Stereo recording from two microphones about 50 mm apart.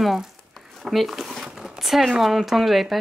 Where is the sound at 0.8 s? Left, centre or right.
Centre.